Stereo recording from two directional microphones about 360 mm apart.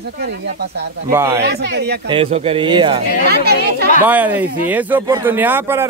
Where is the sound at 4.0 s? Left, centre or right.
Centre.